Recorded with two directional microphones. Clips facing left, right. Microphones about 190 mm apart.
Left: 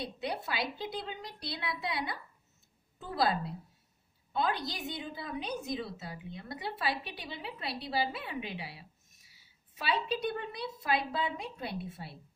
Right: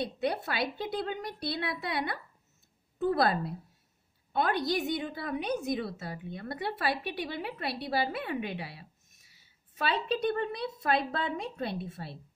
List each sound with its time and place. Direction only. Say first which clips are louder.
0.0 s a woman's voice: right 5 dB; 55° right (ahead or behind)
4.3 s a woman's voice: right 4 dB; 60° right (ahead or behind)
9.8 s a woman's voice: right 3 dB; 55° right (ahead or behind)